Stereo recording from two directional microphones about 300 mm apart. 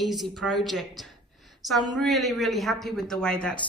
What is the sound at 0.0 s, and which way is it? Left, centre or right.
A woman's voice, centre.